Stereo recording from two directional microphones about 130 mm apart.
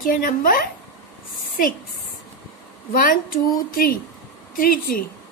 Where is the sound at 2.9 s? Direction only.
90° left.